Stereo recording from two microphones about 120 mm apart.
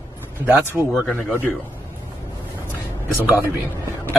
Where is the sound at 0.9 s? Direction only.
10° left (ahead or behind).